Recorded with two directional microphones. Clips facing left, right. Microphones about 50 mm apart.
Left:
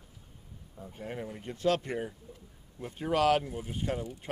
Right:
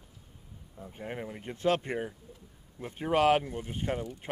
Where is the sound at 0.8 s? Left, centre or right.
Right.